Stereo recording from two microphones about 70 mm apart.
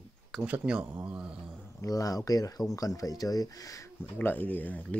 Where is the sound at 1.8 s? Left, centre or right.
Left.